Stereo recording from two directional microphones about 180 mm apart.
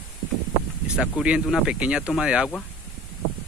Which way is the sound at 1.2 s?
5° right (ahead or behind).